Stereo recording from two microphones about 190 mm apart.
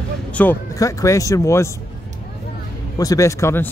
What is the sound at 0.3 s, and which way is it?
Speech, 10° left (ahead or behind).